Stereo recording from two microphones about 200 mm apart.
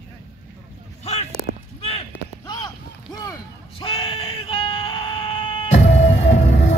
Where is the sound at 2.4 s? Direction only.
20° left (ahead or behind).